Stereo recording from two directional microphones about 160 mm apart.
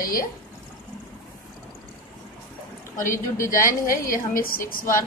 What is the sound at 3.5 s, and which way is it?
A woman's voice, 60° left (ahead or behind).